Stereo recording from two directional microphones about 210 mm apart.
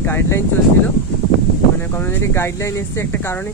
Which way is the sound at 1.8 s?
10° left (ahead or behind).